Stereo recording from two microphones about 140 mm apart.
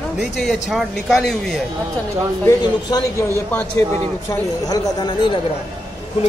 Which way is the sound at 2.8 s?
30° left (ahead or behind).